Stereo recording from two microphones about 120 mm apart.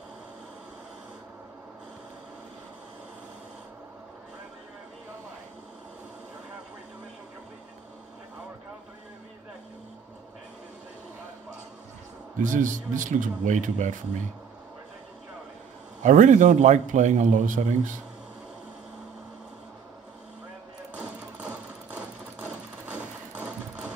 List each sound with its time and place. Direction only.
12.4 s a man's voice: 90° right
16.0 s a man's voice: 90° right
20.9 s sewing machine: 10° right (ahead or behind)